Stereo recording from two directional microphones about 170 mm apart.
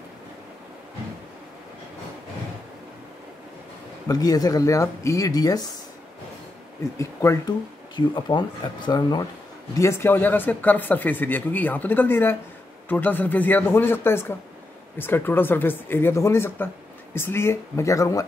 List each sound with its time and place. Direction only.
4.1 s speech: 20° left (ahead or behind)
7.0 s speech: 15° left (ahead or behind)